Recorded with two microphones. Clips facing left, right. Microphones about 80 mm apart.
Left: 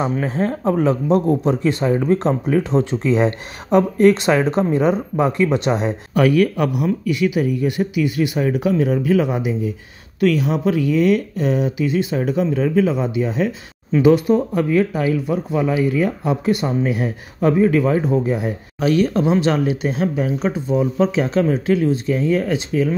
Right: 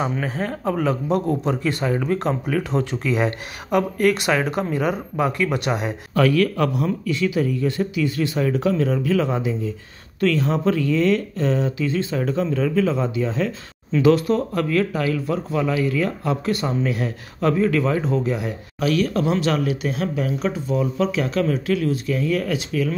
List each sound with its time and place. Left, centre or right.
0.3 s speech: left